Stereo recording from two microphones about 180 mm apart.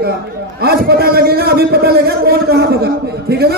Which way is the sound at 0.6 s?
60° right (ahead or behind).